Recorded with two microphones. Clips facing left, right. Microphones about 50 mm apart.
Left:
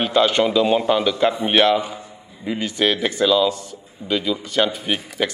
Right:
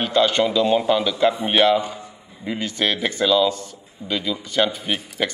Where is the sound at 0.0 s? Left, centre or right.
Centre.